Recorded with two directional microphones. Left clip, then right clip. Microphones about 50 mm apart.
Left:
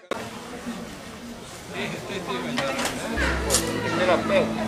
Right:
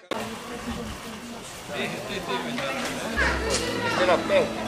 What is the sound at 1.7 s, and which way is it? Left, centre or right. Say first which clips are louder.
Speech: right 1 dB; centre.